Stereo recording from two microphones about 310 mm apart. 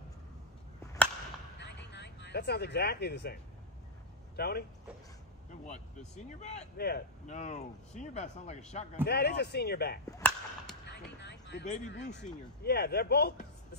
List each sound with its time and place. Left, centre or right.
1.6 s a sound: left
4.4 s speech: left
5.7 s speech: left
9.0 s speech: left
10.1 s whip: centre
10.9 s a sound: left
12.2 s speech: left